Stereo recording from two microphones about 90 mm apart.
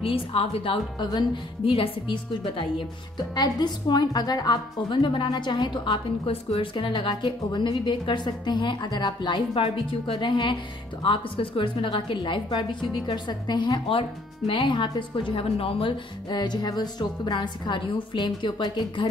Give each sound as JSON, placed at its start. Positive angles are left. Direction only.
{"t": 0.0, "sound": "speech", "side_deg": 90}
{"t": 1.0, "sound": "a woman's voice", "side_deg": 50}
{"t": 1.6, "sound": "speech", "side_deg": 80}
{"t": 3.3, "sound": "a woman's voice", "side_deg": 50}
{"t": 13.8, "sound": "speech", "side_deg": 75}
{"t": 16.3, "sound": "a woman's voice", "side_deg": 50}